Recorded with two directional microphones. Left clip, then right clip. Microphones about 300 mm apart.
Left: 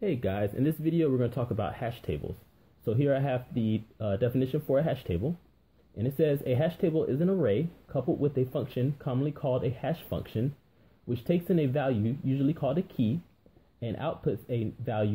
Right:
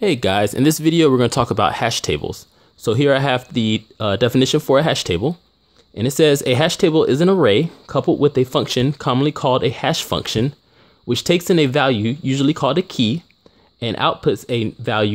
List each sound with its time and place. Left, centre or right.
0.0 s speech: right